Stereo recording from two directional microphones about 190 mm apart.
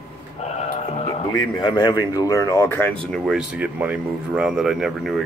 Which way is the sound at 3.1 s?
Centre (ahead or behind).